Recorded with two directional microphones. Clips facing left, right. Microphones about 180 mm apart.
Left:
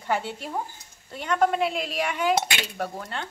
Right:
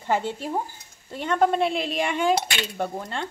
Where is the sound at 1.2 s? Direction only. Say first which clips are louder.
Right 2 dB; 30° right (ahead or behind).